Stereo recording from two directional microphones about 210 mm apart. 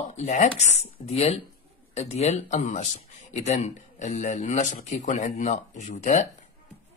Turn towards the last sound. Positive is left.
turn(degrees=35)  # may be behind; listen again after turning